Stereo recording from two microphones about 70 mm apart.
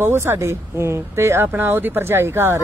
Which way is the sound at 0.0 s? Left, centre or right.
Right.